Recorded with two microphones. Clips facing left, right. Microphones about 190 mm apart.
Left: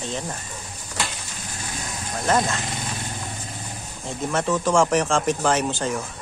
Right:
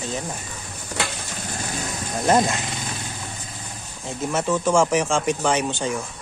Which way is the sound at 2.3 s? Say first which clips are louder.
Right 3 dB; 20° right (ahead or behind).